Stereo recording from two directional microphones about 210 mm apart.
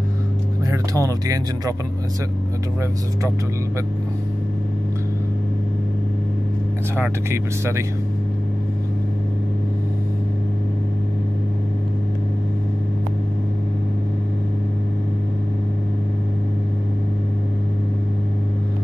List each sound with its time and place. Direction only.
0.7 s speech: 15° right (ahead or behind)
7.0 s speech: 10° right (ahead or behind)